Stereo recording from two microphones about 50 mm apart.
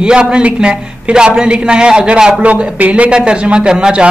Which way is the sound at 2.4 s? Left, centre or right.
Right.